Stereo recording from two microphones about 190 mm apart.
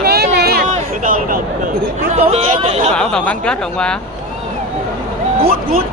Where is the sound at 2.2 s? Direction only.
30° right (ahead or behind).